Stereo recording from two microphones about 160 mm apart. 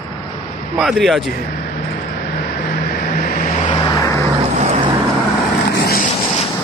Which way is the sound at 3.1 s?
60° left (ahead or behind).